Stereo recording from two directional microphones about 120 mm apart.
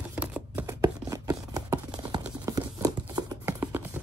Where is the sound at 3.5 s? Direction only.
20° right (ahead or behind).